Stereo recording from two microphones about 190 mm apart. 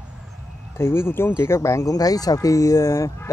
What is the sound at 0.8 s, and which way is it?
Speech, 10° left (ahead or behind).